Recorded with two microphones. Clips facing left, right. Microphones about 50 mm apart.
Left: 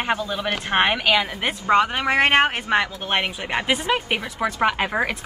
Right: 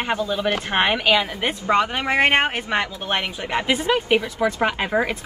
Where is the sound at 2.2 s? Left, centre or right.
Centre.